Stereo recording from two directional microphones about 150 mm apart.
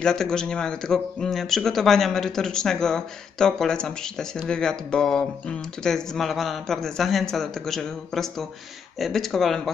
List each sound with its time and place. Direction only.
0.0 s a man's voice: 5° left (ahead or behind)